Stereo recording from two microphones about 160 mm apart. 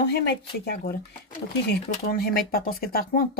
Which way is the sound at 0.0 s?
90° left.